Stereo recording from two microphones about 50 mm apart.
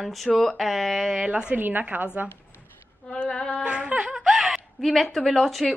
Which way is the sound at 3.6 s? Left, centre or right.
Right.